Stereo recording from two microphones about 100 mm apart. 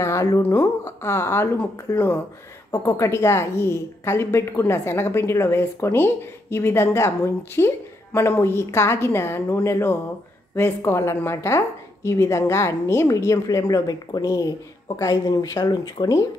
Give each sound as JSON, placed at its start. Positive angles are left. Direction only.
{"t": 0.0, "sound": "a woman's voice", "side_deg": 30}
{"t": 2.7, "sound": "a woman's voice", "side_deg": 30}